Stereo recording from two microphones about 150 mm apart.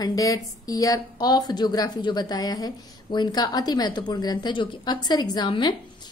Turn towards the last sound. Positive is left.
turn(degrees=30)  # may be behind; listen again after turning